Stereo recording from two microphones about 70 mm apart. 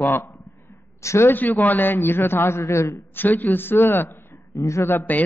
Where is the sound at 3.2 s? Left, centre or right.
Left.